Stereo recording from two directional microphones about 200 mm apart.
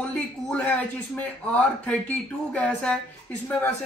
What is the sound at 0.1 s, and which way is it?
Speech, 5° left (ahead or behind).